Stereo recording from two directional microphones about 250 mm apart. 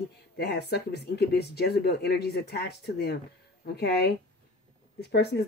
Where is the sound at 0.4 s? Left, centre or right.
Left.